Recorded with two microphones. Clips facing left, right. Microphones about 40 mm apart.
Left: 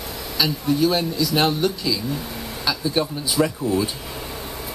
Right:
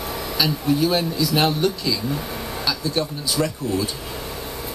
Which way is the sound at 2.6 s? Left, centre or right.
Centre.